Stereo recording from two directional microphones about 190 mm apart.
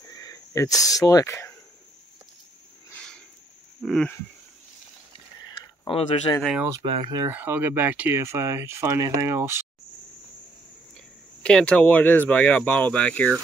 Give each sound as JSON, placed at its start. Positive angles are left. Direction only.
{"t": 0.1, "sound": "speech", "side_deg": 20}
{"t": 2.9, "sound": "a sound", "side_deg": 5}
{"t": 5.9, "sound": "speech", "side_deg": 30}
{"t": 6.8, "sound": "speech", "side_deg": -30}
{"t": 7.2, "sound": "speech", "side_deg": -10}
{"t": 11.4, "sound": "speech", "side_deg": 5}